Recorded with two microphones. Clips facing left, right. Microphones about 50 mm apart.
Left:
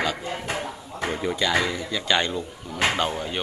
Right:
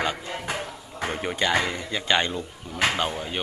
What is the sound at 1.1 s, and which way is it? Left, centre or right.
Speech, right.